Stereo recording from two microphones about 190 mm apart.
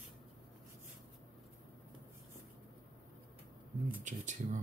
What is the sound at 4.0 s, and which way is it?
Speech, 40° right (ahead or behind).